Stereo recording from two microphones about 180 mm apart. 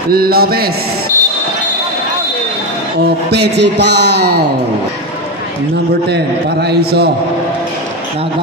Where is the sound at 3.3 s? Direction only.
70° right (ahead or behind).